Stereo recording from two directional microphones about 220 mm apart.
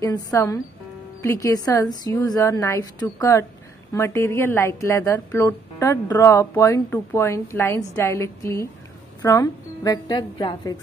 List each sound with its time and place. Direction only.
0.0 s speech: 15° left (ahead or behind)